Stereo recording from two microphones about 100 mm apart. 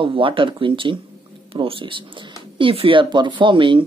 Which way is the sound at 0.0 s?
60° right (ahead or behind).